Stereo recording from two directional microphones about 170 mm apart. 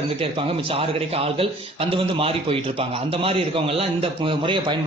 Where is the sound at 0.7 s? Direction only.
35° right (ahead or behind).